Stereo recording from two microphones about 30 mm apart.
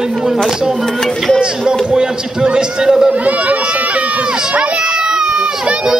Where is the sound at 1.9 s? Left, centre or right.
Right.